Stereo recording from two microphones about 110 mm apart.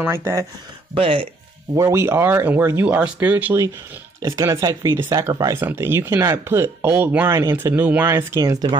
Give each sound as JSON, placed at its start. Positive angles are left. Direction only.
{"t": 0.0, "sound": "speech", "side_deg": -25}
{"t": 0.9, "sound": "speech", "side_deg": -55}
{"t": 1.8, "sound": "speech", "side_deg": -25}
{"t": 4.3, "sound": "speech", "side_deg": -25}